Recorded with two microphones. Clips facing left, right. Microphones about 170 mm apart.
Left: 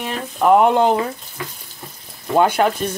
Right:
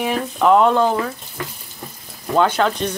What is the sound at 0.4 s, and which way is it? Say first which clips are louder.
Speech: left 1 dB; 15° left (ahead or behind).